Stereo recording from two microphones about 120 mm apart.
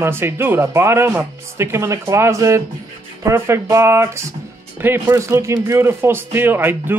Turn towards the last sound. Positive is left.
turn(degrees=-15)  # may be behind; listen again after turning